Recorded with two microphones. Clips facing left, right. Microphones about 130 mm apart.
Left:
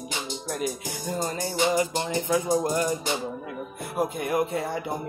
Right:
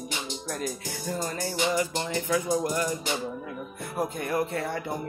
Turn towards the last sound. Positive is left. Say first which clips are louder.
# left 2 dB
turn(degrees=15)  # may be behind; listen again after turning